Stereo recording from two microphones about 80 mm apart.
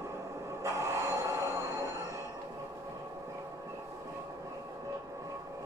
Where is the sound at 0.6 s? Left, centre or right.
Right.